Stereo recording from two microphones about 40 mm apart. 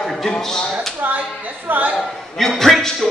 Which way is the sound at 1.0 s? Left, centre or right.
Right.